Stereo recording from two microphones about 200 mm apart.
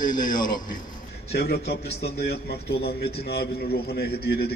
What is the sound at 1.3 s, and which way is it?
A man's voice, 55° left (ahead or behind).